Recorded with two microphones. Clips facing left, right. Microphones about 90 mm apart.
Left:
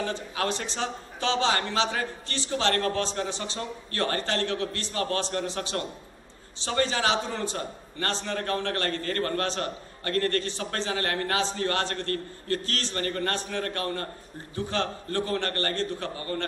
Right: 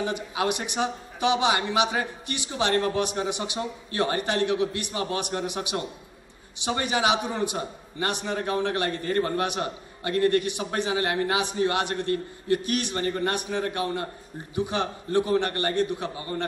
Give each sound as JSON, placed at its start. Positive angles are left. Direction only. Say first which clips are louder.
{"t": 0.0, "sound": "a man's voice", "louder": "right 2 dB", "side_deg": -15}